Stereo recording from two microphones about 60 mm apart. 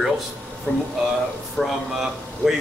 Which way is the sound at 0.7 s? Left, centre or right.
Left.